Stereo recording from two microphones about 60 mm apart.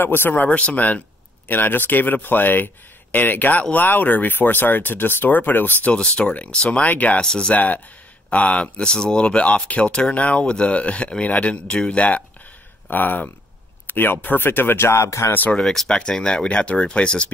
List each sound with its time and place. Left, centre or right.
0.0 s speech: left
5.9 s speech: centre
12.9 s speech: left
14.9 s speech: left
15.6 s speech: centre